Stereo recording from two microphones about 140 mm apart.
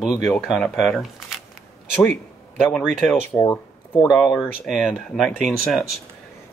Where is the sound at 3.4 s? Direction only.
25° left (ahead or behind).